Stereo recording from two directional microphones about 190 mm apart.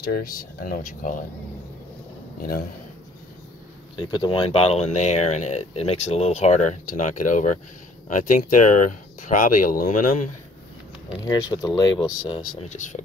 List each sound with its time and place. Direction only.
0.0 s speech: 50° left (ahead or behind)
3.9 s speech: 25° left (ahead or behind); by 10.3 s 45° left (ahead or behind)
11.2 s speech: 20° left (ahead or behind)
12.6 s speech: 40° left (ahead or behind)